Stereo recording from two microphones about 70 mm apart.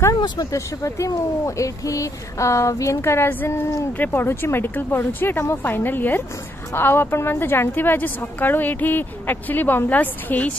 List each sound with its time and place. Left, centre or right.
0.1 s speech: left
4.0 s speech: left